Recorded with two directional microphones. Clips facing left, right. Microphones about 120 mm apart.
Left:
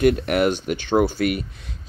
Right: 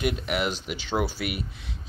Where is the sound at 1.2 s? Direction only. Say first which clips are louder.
Left 9 dB; 5° right (ahead or behind).